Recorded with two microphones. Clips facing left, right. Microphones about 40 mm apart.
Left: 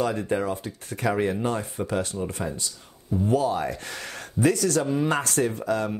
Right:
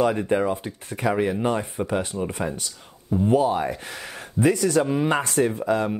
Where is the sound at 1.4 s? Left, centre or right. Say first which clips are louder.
Right 3 dB; right.